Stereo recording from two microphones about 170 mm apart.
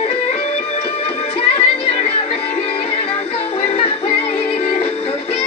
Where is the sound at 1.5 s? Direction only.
35° left (ahead or behind).